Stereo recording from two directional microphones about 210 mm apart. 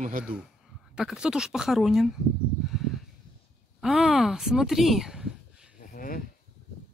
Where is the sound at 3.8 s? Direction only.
Centre (ahead or behind).